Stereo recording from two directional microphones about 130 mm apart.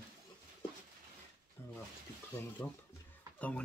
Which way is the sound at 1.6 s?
15° left (ahead or behind).